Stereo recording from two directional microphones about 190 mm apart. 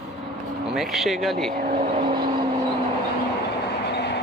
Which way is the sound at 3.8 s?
60° left (ahead or behind).